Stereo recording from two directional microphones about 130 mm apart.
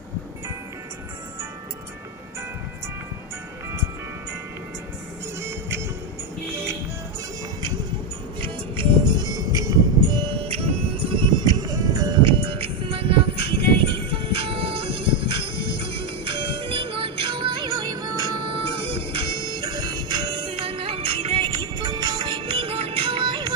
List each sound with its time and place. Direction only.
5.4 s music: 20° right (ahead or behind)
8.4 s music: 35° right (ahead or behind)
18.7 s music: 45° right (ahead or behind)